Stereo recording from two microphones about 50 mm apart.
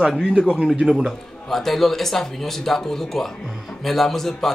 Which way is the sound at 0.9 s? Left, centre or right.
Centre.